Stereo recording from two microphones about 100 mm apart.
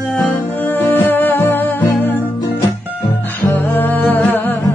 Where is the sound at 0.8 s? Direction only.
20° left (ahead or behind).